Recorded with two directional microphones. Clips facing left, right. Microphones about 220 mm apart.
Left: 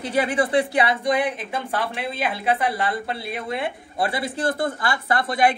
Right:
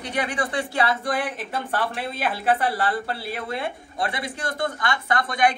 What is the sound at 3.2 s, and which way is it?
Speech, centre (ahead or behind).